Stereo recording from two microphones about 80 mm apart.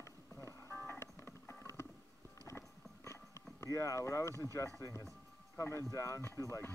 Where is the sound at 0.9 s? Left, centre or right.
Left.